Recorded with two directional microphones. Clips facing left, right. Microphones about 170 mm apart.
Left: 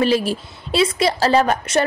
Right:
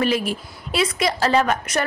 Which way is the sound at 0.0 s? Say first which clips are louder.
Left 3 dB; 30° left (ahead or behind).